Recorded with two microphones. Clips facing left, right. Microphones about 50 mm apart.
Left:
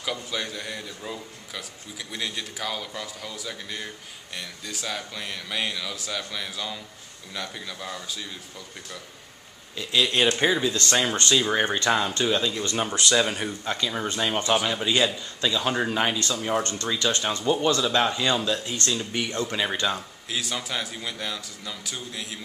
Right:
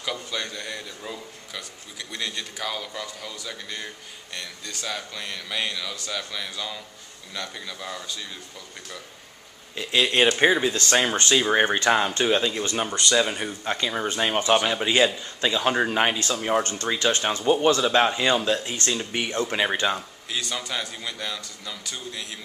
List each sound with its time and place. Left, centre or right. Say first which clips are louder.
0.0 s a man's voice: even; centre
9.8 s speech: right 2 dB; right
13.1 s a man's voice: right 2 dB; centre
13.7 s speech: right 3 dB; right
14.5 s speech: right 3 dB; centre
20.2 s a man's voice: even; centre